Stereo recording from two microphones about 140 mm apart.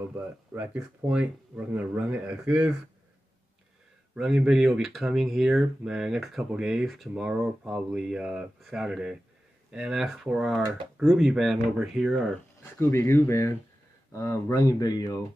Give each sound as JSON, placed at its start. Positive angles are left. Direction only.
{"t": 0.5, "sound": "speech", "side_deg": -10}
{"t": 4.1, "sound": "speech", "side_deg": -5}
{"t": 12.8, "sound": "speech", "side_deg": 20}